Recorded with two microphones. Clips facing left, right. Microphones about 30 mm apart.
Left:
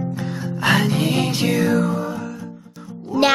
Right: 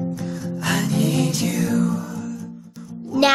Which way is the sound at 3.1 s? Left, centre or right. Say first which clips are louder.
Even; centre.